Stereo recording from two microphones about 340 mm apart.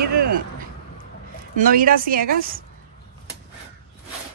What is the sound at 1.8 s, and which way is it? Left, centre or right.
Speech, right.